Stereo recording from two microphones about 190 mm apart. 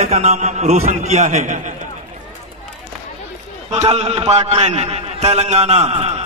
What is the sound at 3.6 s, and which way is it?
A man's voice, 35° right (ahead or behind).